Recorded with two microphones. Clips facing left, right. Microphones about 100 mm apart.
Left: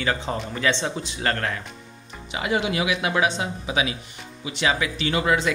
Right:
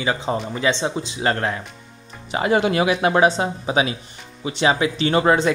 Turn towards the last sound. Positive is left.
turn(degrees=-35)  # may be behind; listen again after turning